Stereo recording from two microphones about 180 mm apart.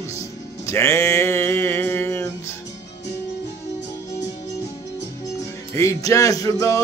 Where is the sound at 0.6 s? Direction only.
15° left (ahead or behind).